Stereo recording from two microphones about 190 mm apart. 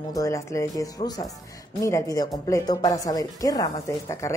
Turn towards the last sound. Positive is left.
turn(degrees=15)  # may be behind; listen again after turning